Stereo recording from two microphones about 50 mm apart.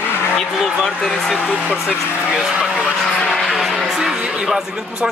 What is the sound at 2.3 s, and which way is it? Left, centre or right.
Speech, centre.